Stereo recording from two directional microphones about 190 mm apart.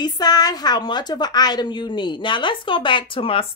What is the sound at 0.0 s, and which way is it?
A woman's voice, 20° left (ahead or behind).